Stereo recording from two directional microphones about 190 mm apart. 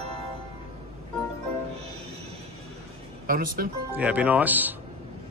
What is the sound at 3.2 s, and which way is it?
Speech, 45° right (ahead or behind).